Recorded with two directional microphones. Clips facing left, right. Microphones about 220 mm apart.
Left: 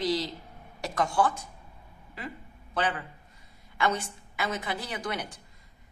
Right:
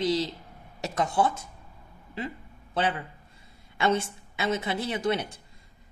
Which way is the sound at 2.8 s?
25° right (ahead or behind).